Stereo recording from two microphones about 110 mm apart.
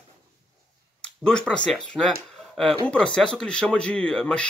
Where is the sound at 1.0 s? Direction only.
5° left (ahead or behind).